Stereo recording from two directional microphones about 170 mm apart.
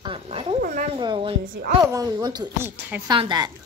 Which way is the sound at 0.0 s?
30° right (ahead or behind).